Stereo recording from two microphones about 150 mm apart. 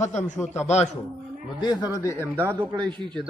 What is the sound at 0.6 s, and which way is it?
Speech, 50° left (ahead or behind).